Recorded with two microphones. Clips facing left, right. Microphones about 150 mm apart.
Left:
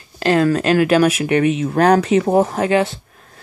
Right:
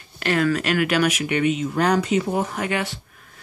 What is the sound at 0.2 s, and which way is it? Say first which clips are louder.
Speech: left 6 dB; 30° left (ahead or behind).